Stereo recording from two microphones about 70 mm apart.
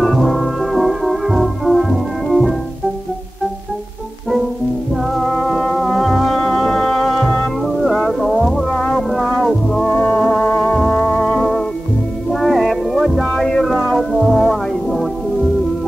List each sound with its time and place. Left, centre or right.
0.0 s music: centre
5.1 s music: centre
9.8 s music: left
11.2 s music: centre